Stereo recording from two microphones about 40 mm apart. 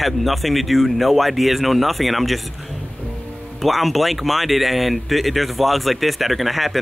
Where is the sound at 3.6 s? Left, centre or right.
Centre.